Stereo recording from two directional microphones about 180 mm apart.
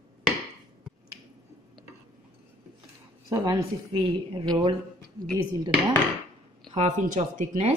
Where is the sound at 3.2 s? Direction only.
25° right (ahead or behind).